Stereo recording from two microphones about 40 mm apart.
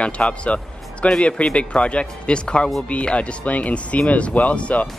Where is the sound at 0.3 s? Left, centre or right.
Left.